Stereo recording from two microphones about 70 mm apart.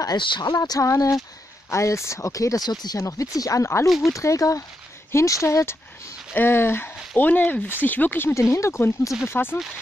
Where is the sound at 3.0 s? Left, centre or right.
Left.